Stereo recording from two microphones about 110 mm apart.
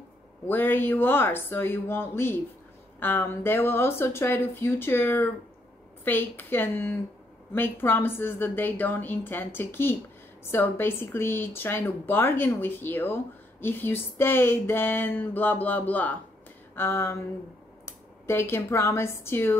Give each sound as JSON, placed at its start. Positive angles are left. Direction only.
{"t": 0.5, "sound": "speech", "side_deg": 20}